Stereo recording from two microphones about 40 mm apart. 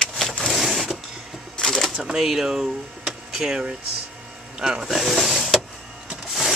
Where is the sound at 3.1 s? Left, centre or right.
Centre.